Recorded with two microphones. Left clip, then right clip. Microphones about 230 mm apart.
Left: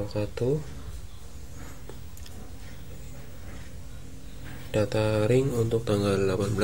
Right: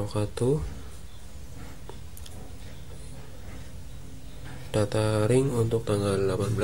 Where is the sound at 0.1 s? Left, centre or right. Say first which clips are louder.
Right 2 dB; centre.